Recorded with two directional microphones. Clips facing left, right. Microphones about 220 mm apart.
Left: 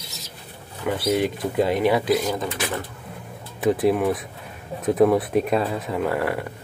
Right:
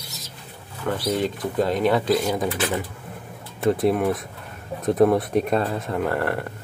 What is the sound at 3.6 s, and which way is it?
Speech, centre (ahead or behind).